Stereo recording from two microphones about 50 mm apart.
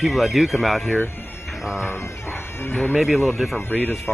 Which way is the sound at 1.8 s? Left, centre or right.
Left.